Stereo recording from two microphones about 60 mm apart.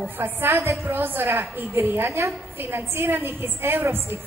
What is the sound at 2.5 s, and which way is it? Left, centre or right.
A woman's voice, right.